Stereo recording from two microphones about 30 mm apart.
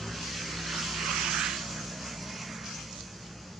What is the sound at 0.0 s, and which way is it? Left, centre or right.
Vehicle, centre.